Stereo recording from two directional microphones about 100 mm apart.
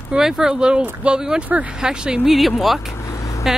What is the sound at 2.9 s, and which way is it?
Vehicle, 30° left (ahead or behind).